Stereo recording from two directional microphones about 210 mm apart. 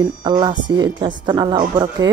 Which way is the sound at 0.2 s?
20° right (ahead or behind).